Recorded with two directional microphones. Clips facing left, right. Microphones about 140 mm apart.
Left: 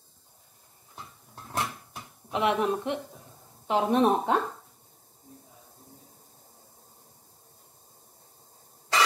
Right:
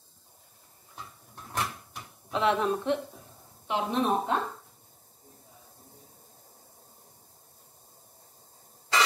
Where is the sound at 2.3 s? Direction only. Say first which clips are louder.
Even; 15° left (ahead or behind).